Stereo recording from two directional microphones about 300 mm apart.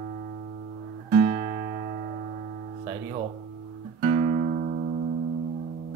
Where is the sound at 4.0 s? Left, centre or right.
Right.